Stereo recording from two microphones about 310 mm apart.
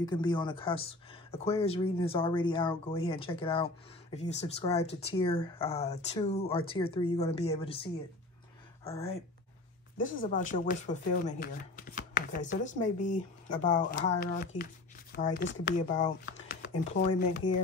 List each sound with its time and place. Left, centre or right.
0.0 s speech: centre
4.1 s chopping: left
8.8 s speech: centre
10.2 s chopping: left